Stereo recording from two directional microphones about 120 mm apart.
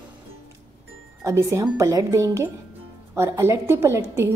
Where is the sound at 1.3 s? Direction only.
25° right (ahead or behind).